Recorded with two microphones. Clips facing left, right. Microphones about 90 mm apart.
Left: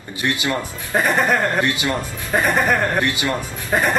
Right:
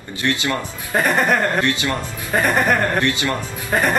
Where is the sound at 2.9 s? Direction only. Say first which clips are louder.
Right 1 dB; 20° left (ahead or behind).